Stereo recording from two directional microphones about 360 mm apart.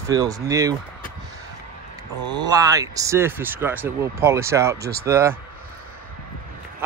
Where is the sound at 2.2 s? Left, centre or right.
Centre.